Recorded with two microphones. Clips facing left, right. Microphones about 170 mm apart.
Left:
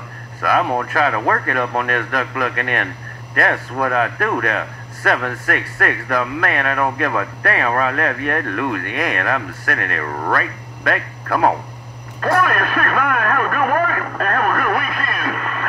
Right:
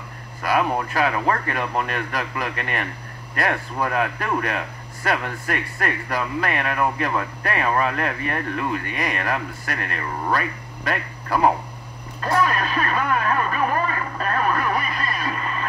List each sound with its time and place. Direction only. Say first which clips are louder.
0.4 s a man's voice: left 3 dB; 55° left (ahead or behind)